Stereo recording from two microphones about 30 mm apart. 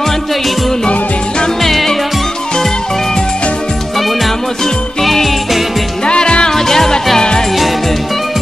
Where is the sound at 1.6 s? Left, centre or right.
Centre.